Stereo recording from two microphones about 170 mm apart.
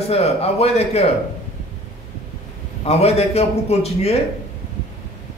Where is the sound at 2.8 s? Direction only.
35° left (ahead or behind).